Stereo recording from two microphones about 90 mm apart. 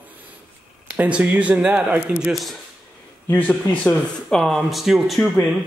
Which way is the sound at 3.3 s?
20° left (ahead or behind).